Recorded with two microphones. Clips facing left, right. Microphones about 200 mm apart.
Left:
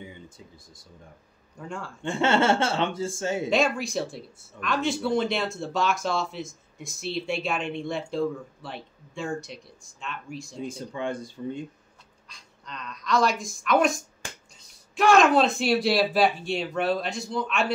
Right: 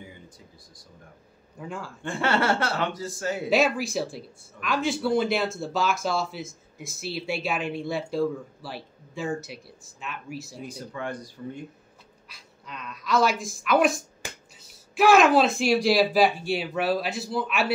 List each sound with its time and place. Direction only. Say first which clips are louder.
1.6 s speech: even; centre (ahead or behind)
2.0 s speech: left 2 dB; 25° left (ahead or behind)
3.4 s speech: right 3 dB; 5° right (ahead or behind)
10.6 s speech: left 5 dB; 25° left (ahead or behind)
12.3 s speech: even; 5° right (ahead or behind)